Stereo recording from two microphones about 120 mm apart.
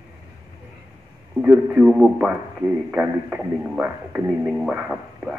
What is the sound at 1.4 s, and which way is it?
Speech, 15° right (ahead or behind).